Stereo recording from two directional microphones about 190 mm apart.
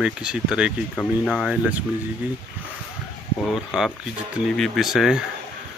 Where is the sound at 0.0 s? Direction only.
5° right (ahead or behind).